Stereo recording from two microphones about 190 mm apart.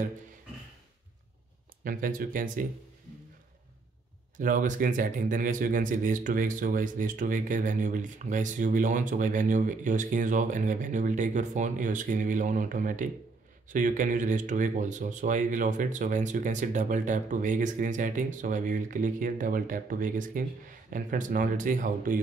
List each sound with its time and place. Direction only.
1.9 s speech: 45° right (ahead or behind)
4.4 s speech: 45° right (ahead or behind)